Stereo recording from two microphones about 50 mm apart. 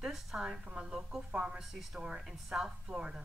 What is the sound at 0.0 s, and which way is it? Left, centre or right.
Speech, centre.